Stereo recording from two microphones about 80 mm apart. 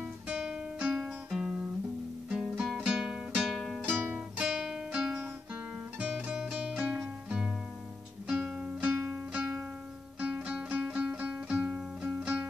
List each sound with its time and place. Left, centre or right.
0.3 s music: centre
3.0 s music: centre
3.8 s music: right
4.4 s guitar: centre
5.9 s music: centre
9.3 s music: centre